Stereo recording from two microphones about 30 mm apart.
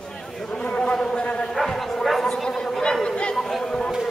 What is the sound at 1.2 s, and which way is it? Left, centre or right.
Bow-wow, left.